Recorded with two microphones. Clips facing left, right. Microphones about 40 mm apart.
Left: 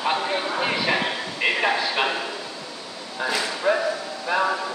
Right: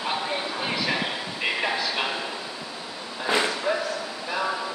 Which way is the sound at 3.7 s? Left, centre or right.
Centre.